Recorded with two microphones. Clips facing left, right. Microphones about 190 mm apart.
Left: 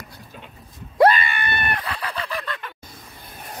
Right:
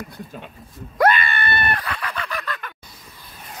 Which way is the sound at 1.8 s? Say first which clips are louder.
Even; 30° left (ahead or behind).